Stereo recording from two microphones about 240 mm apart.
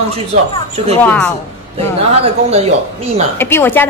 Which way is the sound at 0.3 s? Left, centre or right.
Right.